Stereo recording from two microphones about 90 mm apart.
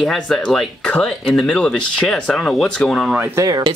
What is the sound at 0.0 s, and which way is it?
Speech, 5° left (ahead or behind).